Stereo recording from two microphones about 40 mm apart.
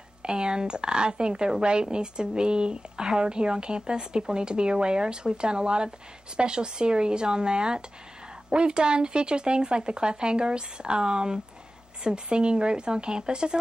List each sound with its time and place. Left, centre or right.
0.2 s speech: right